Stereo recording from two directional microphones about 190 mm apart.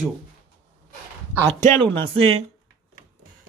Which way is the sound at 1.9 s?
30° right (ahead or behind).